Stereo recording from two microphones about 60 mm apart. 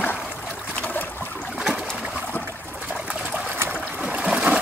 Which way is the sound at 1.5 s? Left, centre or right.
Centre.